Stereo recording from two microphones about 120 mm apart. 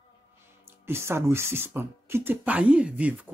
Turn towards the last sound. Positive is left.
turn(degrees=-10)  # may be behind; listen again after turning